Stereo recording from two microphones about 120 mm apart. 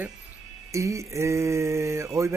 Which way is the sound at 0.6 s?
25° right (ahead or behind).